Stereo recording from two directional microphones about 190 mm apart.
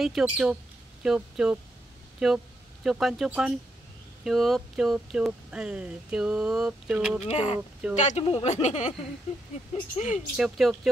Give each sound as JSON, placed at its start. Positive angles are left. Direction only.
{"t": 0.0, "sound": "speech", "side_deg": 0}
{"t": 7.2, "sound": "speech", "side_deg": 35}
{"t": 9.9, "sound": "speech", "side_deg": 40}
{"t": 10.3, "sound": "speech", "side_deg": 0}